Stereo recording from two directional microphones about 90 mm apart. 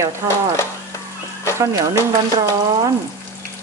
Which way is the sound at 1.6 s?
35° right (ahead or behind).